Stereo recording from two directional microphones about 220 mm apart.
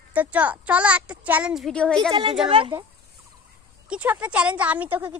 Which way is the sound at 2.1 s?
20° right (ahead or behind).